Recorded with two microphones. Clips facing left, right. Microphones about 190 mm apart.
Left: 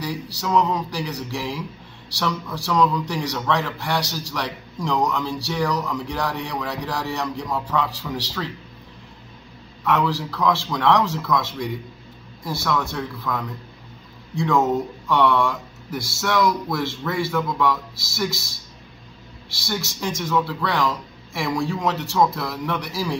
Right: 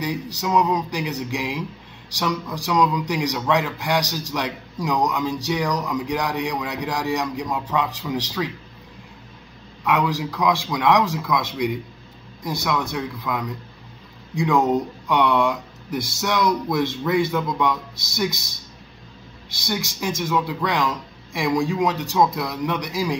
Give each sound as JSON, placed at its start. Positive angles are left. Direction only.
{"t": 0.0, "sound": "a man's voice", "side_deg": -20}
{"t": 9.8, "sound": "a man's voice", "side_deg": -15}
{"t": 19.5, "sound": "a man's voice", "side_deg": -15}